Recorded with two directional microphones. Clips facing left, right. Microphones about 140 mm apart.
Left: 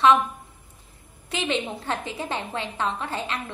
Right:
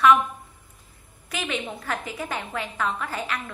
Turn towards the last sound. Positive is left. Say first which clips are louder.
# left 1 dB
turn(degrees=25)  # may be behind; listen again after turning